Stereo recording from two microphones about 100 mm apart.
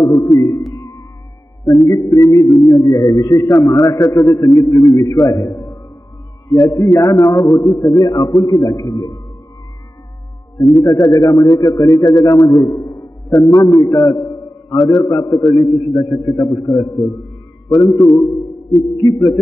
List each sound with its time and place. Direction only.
0.0 s music: 35° left (ahead or behind)
1.9 s a man's voice: 35° left (ahead or behind)
10.7 s a man's voice: 30° left (ahead or behind)